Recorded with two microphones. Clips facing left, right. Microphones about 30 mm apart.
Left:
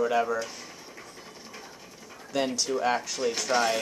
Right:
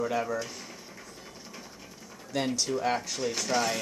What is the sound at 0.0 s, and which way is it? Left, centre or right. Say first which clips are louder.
Speech: left 4 dB; centre.